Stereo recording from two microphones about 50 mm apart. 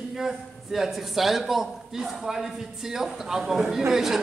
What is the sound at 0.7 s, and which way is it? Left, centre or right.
A man's voice, centre.